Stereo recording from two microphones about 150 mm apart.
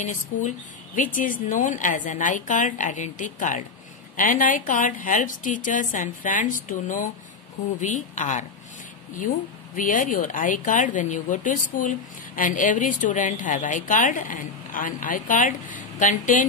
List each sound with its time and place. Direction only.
0.9 s speech: 65° left (ahead or behind)
9.8 s speech: 60° left (ahead or behind)